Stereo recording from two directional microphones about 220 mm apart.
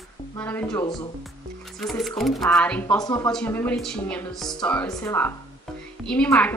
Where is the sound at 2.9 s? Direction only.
15° left (ahead or behind).